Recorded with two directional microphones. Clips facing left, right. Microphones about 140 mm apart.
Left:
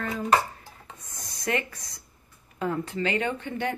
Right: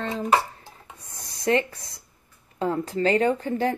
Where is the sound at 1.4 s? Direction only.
30° right (ahead or behind).